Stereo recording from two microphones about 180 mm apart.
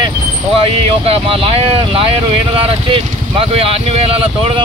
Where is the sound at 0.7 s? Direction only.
35° right (ahead or behind).